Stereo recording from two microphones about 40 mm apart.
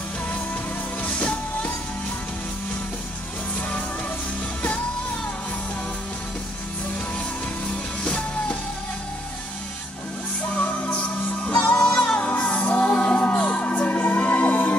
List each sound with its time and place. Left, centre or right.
1.0 s music: left
7.6 s music: left
10.5 s music: left